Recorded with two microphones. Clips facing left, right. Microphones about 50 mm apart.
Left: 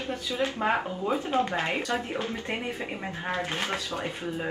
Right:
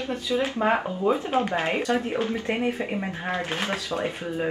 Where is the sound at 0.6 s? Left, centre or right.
Centre.